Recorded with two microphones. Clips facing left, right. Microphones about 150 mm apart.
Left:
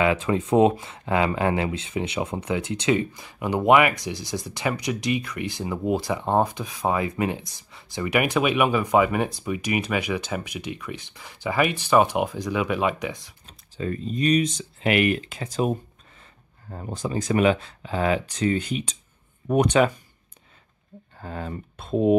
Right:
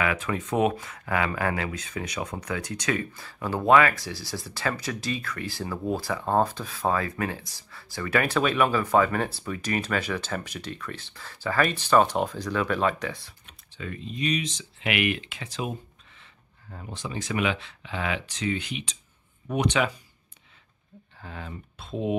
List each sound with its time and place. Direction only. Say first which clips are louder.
0.0 s speech: left 6 dB; 25° left (ahead or behind)
13.5 s speech: left 8 dB; 35° left (ahead or behind)
21.2 s speech: left 7 dB; 45° left (ahead or behind)